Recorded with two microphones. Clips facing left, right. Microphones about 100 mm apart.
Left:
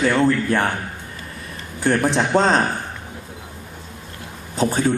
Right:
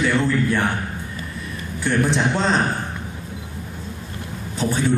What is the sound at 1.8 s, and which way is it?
Speech, 40° left (ahead or behind).